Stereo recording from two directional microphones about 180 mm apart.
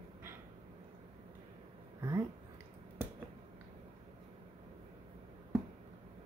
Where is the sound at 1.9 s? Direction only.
15° right (ahead or behind).